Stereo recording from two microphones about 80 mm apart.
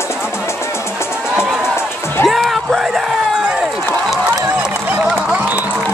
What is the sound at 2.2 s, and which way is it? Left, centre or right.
Run, centre.